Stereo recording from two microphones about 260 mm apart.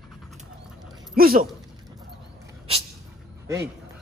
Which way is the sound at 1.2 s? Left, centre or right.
Right.